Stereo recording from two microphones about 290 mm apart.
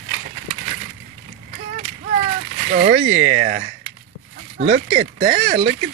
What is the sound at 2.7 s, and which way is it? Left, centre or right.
Speech, right.